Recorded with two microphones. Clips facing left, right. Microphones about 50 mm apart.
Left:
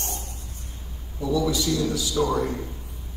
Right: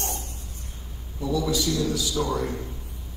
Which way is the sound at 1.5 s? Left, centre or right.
Left.